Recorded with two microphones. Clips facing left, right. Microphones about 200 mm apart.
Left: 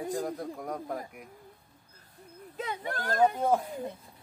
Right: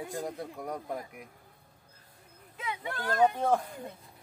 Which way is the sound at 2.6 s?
45° left (ahead or behind).